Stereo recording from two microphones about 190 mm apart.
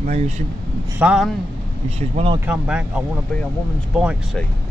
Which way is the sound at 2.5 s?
5° right (ahead or behind).